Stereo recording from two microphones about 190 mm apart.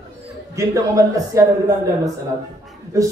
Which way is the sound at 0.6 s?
15° right (ahead or behind).